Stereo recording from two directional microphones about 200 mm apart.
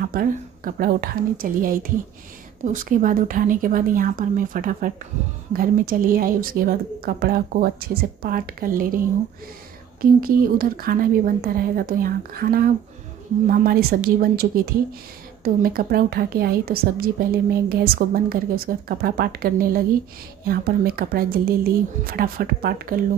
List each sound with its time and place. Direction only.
0.0 s a woman's voice: 45° right (ahead or behind)
10.2 s a woman's voice: 45° right (ahead or behind)